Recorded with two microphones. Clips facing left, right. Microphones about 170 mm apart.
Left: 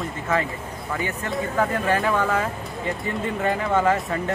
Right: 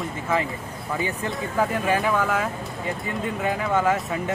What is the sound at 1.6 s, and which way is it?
Speech, 5° right (ahead or behind).